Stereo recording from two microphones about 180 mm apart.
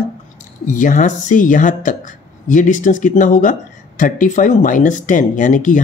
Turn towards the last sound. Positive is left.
turn(degrees=45)  # may be behind; listen again after turning